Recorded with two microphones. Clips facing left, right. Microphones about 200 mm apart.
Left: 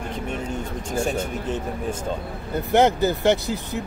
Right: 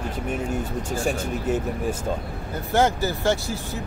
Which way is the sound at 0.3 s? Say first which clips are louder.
Right 4 dB; 10° right (ahead or behind).